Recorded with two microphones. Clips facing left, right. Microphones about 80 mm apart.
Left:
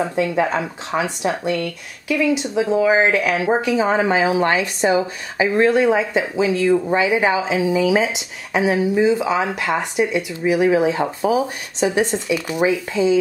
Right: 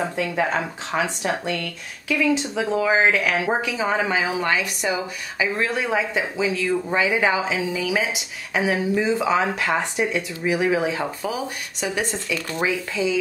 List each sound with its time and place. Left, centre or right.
0.1 s a woman's voice: left
8.5 s a woman's voice: centre